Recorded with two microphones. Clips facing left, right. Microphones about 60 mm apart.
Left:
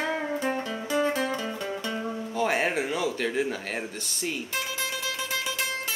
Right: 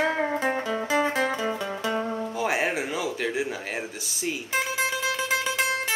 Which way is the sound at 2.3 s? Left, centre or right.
Centre.